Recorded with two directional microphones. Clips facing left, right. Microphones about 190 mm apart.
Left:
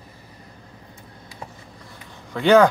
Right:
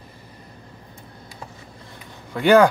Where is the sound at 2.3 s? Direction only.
10° right (ahead or behind).